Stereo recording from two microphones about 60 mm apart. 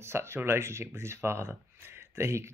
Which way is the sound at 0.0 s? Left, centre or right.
Right.